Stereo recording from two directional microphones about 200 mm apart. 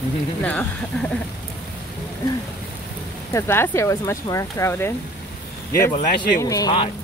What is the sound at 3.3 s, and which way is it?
Speech, 10° left (ahead or behind).